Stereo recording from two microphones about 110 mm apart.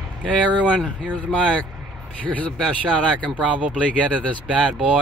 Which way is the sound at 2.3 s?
10° left (ahead or behind).